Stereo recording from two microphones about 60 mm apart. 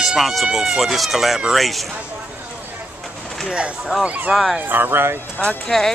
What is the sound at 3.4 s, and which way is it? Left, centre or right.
Speech, centre.